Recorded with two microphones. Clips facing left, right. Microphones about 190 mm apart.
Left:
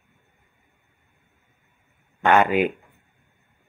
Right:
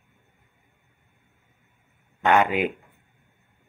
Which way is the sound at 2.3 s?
15° right (ahead or behind).